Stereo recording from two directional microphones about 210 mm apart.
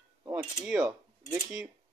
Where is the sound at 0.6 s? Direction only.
5° right (ahead or behind).